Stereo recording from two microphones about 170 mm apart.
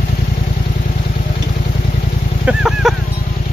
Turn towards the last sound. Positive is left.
turn(degrees=-5)  # may be behind; listen again after turning